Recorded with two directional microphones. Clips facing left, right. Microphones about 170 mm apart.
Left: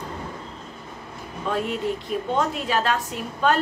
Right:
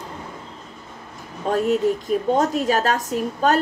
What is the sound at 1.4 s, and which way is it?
A woman's voice, 45° right (ahead or behind).